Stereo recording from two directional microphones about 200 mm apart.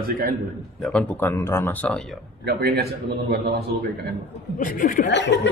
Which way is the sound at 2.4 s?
50° right (ahead or behind).